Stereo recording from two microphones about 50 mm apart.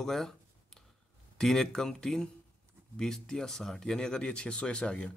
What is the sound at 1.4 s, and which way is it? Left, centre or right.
Speech, centre.